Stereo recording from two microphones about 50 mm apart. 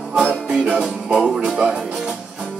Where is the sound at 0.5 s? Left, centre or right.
Right.